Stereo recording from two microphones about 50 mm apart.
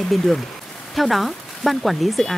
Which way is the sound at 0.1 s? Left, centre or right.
Centre.